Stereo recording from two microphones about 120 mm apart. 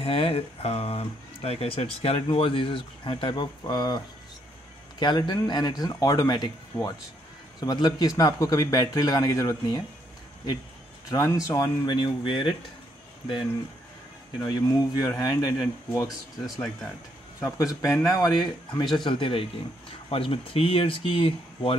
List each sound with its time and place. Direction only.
0.0 s speech: 50° left (ahead or behind); by 9.8 s 30° left (ahead or behind)
11.1 s speech: 25° left (ahead or behind); by 12.5 s 45° left (ahead or behind)
14.4 s speech: 30° left (ahead or behind)
17.4 s speech: 30° left (ahead or behind); by 21.7 s 50° left (ahead or behind)